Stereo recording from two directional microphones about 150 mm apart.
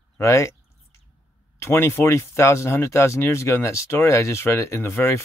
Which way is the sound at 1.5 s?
20° left (ahead or behind).